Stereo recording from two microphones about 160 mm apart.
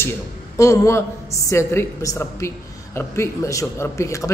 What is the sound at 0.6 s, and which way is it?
A woman's voice, 20° left (ahead or behind).